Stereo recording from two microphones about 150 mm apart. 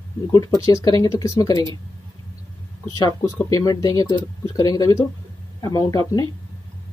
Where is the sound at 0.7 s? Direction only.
25° left (ahead or behind).